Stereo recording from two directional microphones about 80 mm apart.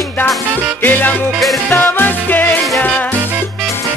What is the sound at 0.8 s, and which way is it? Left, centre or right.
Music, left.